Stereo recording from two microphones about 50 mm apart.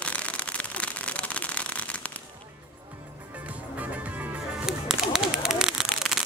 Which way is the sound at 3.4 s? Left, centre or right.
Right.